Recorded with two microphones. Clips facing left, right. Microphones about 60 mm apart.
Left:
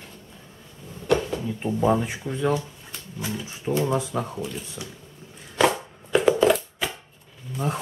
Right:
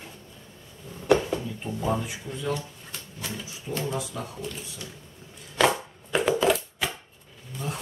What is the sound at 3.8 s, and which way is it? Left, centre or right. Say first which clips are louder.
Speech: left 6 dB; left.